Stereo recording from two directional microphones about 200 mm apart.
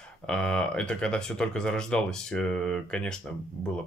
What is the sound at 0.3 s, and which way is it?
Speech, 5° left (ahead or behind).